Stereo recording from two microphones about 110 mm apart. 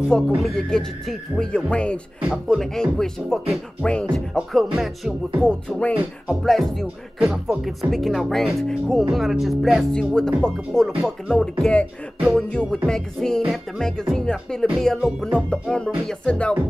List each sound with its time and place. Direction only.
0.4 s speech: 5° left (ahead or behind)
2.2 s speech: 5° right (ahead or behind)
11.6 s music: 10° left (ahead or behind)
12.3 s speech: 5° left (ahead or behind)
15.5 s music: 10° left (ahead or behind)